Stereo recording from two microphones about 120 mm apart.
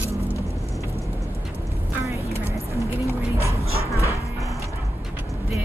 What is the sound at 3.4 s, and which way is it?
Music, 25° left (ahead or behind).